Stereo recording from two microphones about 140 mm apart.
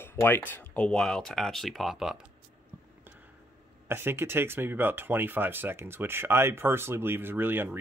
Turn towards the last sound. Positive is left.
turn(degrees=-15)  # may be behind; listen again after turning